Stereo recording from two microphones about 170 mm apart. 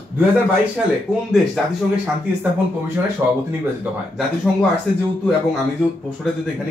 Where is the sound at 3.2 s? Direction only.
15° right (ahead or behind).